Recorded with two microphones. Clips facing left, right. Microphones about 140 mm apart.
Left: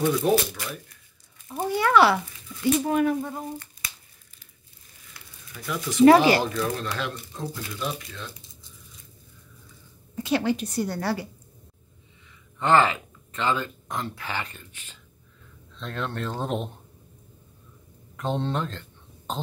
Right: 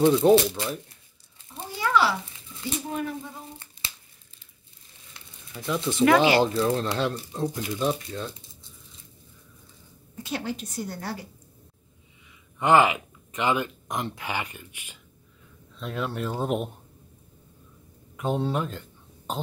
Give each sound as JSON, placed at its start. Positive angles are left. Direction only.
{"t": 0.0, "sound": "speech", "side_deg": -25}
{"t": 1.5, "sound": "a sound", "side_deg": 60}
{"t": 2.8, "sound": "speech", "side_deg": 70}
{"t": 3.8, "sound": "tearing", "side_deg": -30}
{"t": 5.1, "sound": "a sound", "side_deg": -25}
{"t": 6.0, "sound": "speech", "side_deg": 30}
{"t": 6.4, "sound": "speech", "side_deg": -30}
{"t": 7.4, "sound": "speech", "side_deg": -20}
{"t": 7.8, "sound": "speech", "side_deg": -30}
{"t": 10.1, "sound": "a woman's voice", "side_deg": 90}
{"t": 12.5, "sound": "speech", "side_deg": -15}
{"t": 18.1, "sound": "a sound", "side_deg": -10}